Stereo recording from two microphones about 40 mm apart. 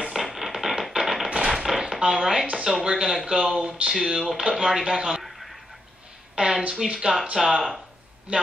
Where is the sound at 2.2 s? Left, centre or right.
Centre.